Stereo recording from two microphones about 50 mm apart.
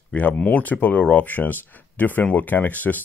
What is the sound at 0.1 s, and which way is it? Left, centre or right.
Speech, left.